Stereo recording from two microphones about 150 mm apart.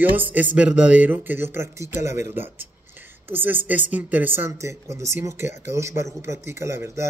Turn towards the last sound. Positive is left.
turn(degrees=-20)  # may be behind; listen again after turning